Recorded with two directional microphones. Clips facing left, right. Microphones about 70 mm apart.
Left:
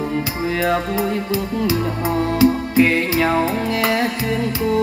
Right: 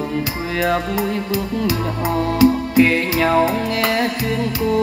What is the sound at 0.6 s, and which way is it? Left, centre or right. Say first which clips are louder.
Music: right 1 dB; left.